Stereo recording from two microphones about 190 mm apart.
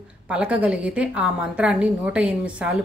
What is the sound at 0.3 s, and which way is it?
A woman's voice, 5° right (ahead or behind).